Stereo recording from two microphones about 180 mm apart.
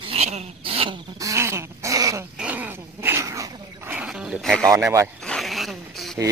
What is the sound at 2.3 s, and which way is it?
Dog, 10° right (ahead or behind).